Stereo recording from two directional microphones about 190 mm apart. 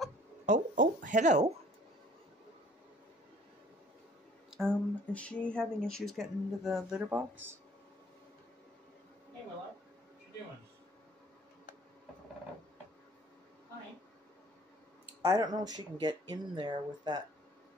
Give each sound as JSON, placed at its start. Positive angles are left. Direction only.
{"t": 0.5, "sound": "speech", "side_deg": -40}
{"t": 4.5, "sound": "speech", "side_deg": 0}
{"t": 15.2, "sound": "speech", "side_deg": -20}